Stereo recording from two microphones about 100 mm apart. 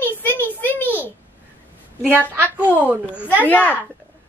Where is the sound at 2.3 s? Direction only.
20° right (ahead or behind).